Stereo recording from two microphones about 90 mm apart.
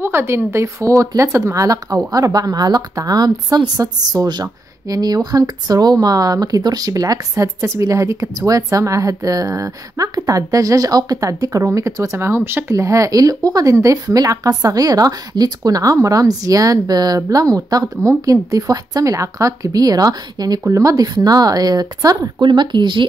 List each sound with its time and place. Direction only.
0.0 s speech: 25° right (ahead or behind)
22.4 s speech: 60° right (ahead or behind)